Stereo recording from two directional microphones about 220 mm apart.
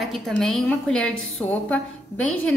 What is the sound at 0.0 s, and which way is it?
Speech, centre (ahead or behind).